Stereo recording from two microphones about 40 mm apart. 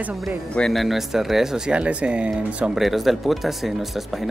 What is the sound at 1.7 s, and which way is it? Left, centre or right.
Speech, right.